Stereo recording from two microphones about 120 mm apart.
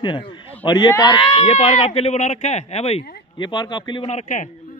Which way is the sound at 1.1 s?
50° left (ahead or behind).